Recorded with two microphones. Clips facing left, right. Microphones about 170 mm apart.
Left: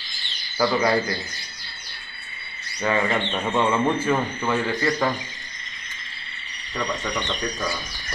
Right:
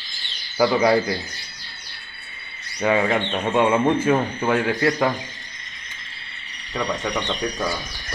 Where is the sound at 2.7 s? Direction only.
15° right (ahead or behind).